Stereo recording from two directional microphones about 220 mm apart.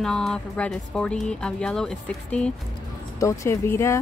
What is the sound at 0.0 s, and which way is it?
Speech, 5° left (ahead or behind).